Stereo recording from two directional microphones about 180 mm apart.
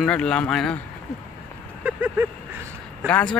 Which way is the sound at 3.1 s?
10° left (ahead or behind).